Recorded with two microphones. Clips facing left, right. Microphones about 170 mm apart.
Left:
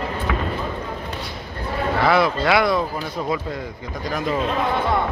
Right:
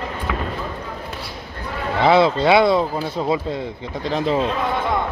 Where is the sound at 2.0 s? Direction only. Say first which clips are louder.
Right 5 dB; 25° right (ahead or behind).